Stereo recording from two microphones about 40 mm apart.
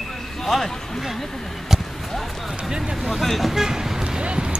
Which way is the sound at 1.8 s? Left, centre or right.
Centre.